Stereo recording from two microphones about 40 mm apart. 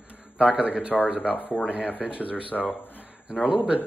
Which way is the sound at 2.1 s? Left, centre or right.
Left.